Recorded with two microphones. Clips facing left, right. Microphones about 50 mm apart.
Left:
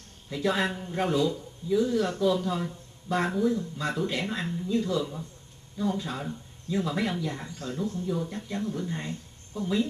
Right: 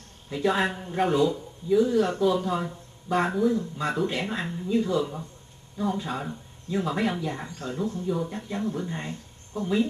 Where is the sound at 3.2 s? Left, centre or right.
Centre.